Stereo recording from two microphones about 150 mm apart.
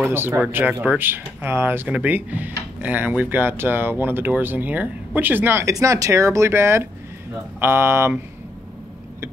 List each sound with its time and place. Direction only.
0.0 s speech: 15° right (ahead or behind)